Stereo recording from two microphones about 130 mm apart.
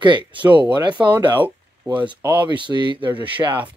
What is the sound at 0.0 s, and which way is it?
Speech, 35° right (ahead or behind).